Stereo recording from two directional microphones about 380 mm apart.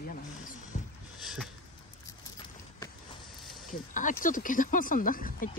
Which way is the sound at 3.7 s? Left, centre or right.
Centre.